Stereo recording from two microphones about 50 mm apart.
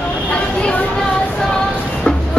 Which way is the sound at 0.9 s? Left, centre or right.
Centre.